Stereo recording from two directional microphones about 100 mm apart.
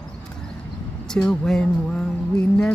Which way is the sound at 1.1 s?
5° left (ahead or behind).